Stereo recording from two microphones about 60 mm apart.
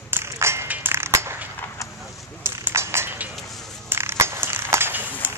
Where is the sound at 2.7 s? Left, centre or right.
Right.